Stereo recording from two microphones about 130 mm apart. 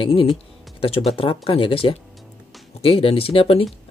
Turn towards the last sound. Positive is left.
turn(degrees=50)  # may be behind; listen again after turning